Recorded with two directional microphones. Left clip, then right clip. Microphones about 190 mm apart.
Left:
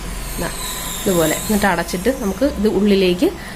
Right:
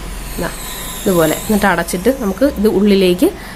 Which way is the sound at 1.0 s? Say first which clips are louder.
Right 4 dB; 20° right (ahead or behind).